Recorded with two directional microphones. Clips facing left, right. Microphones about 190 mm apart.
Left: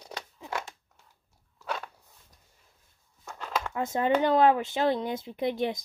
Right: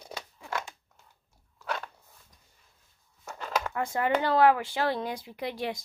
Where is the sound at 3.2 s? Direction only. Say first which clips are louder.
Right 1 dB; 5° right (ahead or behind).